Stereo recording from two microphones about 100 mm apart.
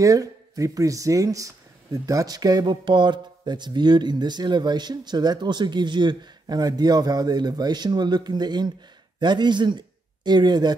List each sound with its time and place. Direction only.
0.0 s a man's voice: 35° right (ahead or behind)